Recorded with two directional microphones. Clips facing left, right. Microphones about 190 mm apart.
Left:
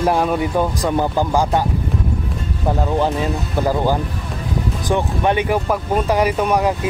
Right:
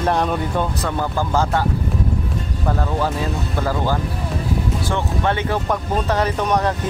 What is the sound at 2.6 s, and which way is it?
Speech, 20° left (ahead or behind).